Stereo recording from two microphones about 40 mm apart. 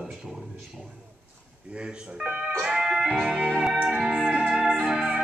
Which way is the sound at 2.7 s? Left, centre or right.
Centre.